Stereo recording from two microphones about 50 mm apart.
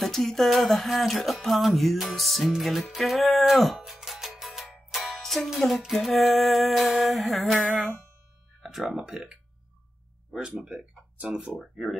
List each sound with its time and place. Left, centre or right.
0.0 s speech: centre
2.6 s music: centre
5.9 s speech: centre
8.6 s speech: centre
11.5 s speech: centre